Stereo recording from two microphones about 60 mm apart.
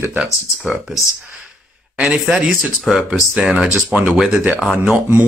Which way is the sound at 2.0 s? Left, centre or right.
Centre.